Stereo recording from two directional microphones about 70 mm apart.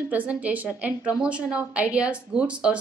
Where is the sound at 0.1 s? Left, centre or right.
Right.